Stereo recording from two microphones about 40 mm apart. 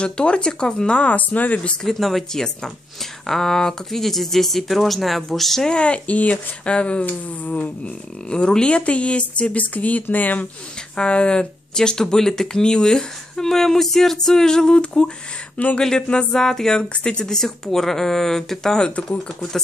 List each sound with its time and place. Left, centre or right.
0.0 s speech: left
1.8 s speech: centre
5.6 s speech: left
7.1 s speech: left
8.3 s speech: left
11.0 s speech: left
15.5 s speech: left
15.8 s speech: left
16.3 s speech: centre
16.9 s speech: left